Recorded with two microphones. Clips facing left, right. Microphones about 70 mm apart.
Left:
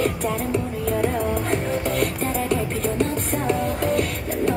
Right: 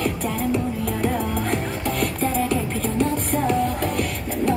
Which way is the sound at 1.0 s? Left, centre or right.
Centre.